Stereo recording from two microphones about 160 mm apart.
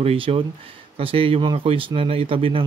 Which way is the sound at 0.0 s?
40° right (ahead or behind).